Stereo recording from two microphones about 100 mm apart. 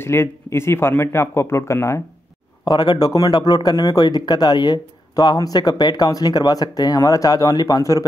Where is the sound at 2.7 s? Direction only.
45° left (ahead or behind).